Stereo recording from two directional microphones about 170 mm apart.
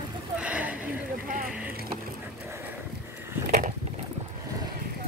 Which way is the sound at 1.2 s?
55° right (ahead or behind).